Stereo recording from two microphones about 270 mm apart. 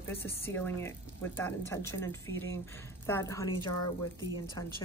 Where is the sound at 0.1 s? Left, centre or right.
Centre.